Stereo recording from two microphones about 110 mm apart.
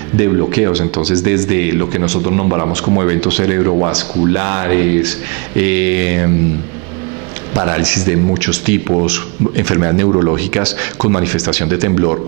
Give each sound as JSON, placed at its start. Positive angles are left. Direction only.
{"t": 0.2, "sound": "speech", "side_deg": -25}
{"t": 7.5, "sound": "speech", "side_deg": -20}
{"t": 10.3, "sound": "speech", "side_deg": -20}